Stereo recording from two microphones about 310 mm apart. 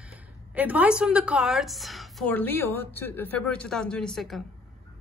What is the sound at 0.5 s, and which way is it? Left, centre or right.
A woman's voice, centre.